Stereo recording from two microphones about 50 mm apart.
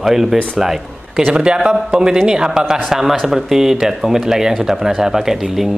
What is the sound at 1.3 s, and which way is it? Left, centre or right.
Speech, centre.